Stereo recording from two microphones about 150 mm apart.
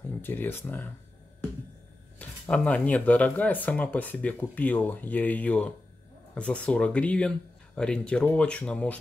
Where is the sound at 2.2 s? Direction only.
10° left (ahead or behind).